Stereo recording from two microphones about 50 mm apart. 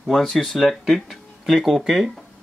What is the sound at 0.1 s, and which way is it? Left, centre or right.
Speech, centre.